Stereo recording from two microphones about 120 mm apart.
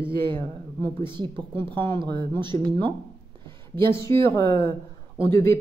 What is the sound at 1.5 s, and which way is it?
Speech, 20° left (ahead or behind).